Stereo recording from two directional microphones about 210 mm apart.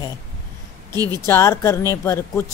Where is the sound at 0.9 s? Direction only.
20° right (ahead or behind).